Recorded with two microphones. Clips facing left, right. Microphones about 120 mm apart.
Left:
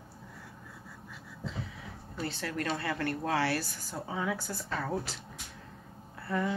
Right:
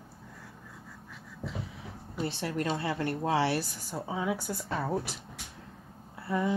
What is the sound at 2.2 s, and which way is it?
A woman's voice, 20° right (ahead or behind).